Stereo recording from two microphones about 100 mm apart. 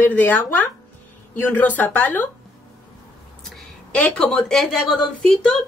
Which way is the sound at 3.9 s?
10° left (ahead or behind).